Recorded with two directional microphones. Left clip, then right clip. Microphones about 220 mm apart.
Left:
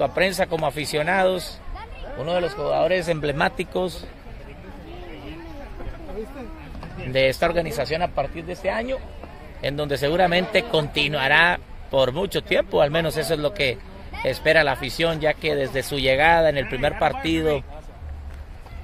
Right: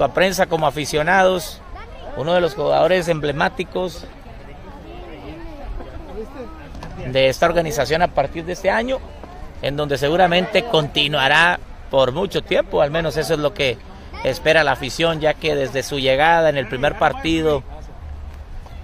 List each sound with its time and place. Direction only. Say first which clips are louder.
0.0 s a man's voice: right 4 dB; 10° right (ahead or behind)
2.1 s speech: right 6 dB; 25° right (ahead or behind)
3.2 s speech: right 3 dB; centre (ahead or behind)
7.1 s speech: right 4 dB; 5° right (ahead or behind)
9.6 s a man's voice: right 4 dB; 5° right (ahead or behind)
13.2 s a man's voice: right 3 dB; 10° right (ahead or behind)